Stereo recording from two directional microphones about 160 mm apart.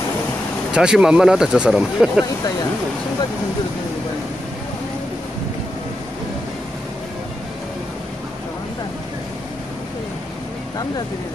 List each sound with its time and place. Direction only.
0.7 s speech: 5° right (ahead or behind)